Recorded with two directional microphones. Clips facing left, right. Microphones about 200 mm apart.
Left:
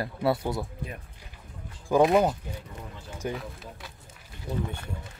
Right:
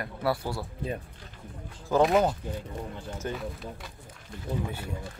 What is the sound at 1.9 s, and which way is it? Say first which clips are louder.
Speech: left 2 dB; 10° left (ahead or behind).